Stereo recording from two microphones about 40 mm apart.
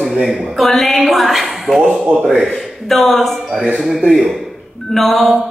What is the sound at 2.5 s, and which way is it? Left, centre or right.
Speech, centre.